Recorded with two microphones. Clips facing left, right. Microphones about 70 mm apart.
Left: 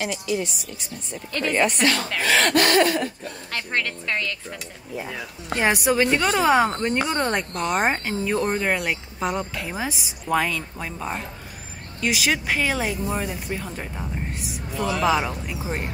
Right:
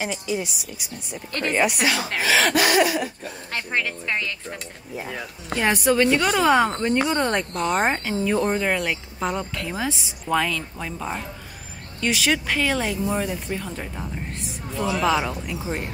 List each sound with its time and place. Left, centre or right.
0.3 s speech: centre
5.6 s a woman's voice: centre